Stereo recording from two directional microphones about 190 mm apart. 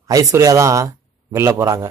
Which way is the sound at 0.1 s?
15° right (ahead or behind).